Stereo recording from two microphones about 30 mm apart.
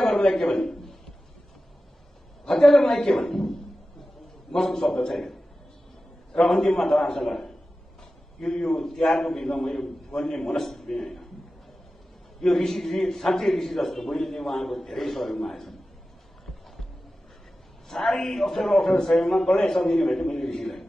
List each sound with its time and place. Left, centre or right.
0.0 s a man's voice: centre
2.5 s a man's voice: centre
4.7 s a man's voice: centre
6.4 s a man's voice: centre
8.4 s a man's voice: left
12.4 s a man's voice: centre
17.8 s a man's voice: centre